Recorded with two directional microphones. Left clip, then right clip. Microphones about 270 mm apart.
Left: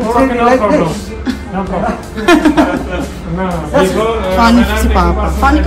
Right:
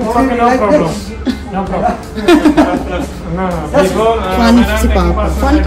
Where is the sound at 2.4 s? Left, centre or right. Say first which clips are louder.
Right 1 dB; centre.